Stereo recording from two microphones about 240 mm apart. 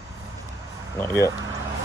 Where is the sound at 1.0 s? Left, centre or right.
Centre.